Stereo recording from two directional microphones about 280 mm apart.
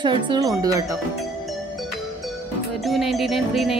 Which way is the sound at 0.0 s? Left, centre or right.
Centre.